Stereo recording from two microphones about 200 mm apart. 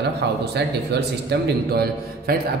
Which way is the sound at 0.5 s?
55° right (ahead or behind).